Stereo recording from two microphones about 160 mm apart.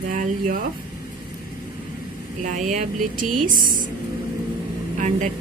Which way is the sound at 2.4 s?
50° right (ahead or behind).